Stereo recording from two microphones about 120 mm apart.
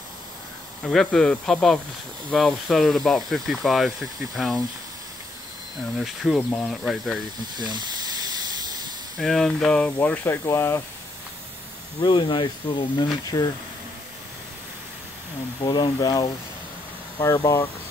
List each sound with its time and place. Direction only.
0.8 s speech: 5° left (ahead or behind)
5.9 s speech: centre (ahead or behind)
7.7 s steam: 35° right (ahead or behind)
9.2 s speech: 5° left (ahead or behind); by 10.8 s 20° left (ahead or behind)
12.0 s speech: 40° left (ahead or behind)
15.6 s speech: 35° left (ahead or behind)
17.4 s speech: 25° left (ahead or behind)